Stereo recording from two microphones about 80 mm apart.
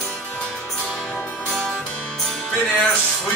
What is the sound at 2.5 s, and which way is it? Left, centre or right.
Speech, centre.